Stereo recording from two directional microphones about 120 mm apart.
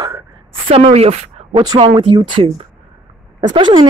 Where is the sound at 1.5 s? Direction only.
30° right (ahead or behind).